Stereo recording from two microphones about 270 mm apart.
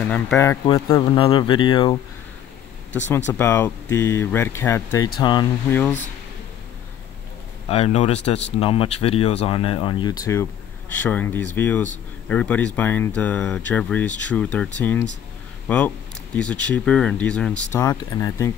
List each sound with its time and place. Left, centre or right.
0.1 s speech: centre
3.1 s speech: centre
7.6 s speech: left